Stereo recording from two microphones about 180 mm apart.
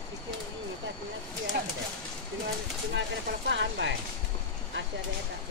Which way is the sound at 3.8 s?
85° right.